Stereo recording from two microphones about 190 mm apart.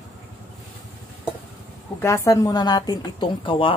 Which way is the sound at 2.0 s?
15° left (ahead or behind).